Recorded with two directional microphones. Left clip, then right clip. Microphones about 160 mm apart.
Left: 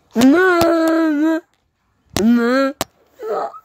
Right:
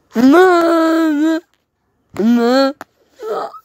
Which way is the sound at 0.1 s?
50° right (ahead or behind).